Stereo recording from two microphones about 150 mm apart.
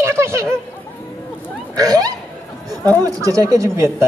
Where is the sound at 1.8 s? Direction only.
25° right (ahead or behind).